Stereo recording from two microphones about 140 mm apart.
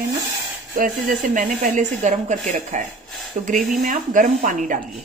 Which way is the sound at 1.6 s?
65° right (ahead or behind).